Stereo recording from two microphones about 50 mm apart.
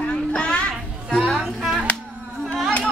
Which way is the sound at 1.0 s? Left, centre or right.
Centre.